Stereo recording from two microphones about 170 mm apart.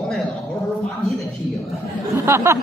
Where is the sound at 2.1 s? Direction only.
15° right (ahead or behind).